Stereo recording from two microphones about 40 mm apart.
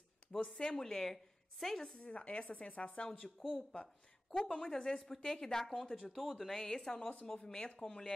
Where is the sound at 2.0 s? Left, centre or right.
Left.